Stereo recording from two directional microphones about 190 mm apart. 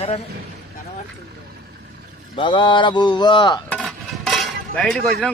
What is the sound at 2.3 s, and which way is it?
Speech, 25° left (ahead or behind).